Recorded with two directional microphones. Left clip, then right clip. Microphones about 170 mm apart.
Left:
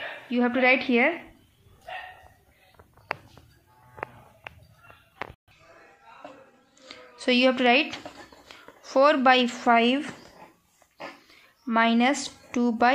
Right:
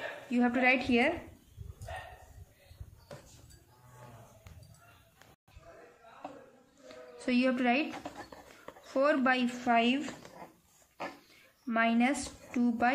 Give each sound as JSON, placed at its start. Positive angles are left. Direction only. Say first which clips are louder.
{"t": 0.3, "sound": "speech", "louder": "left 6 dB", "side_deg": 30}
{"t": 6.9, "sound": "a sound", "louder": "left 9 dB", "side_deg": 30}
{"t": 8.8, "sound": "speech", "louder": "left 9 dB", "side_deg": 30}
{"t": 11.6, "sound": "speech", "louder": "left 7 dB", "side_deg": 40}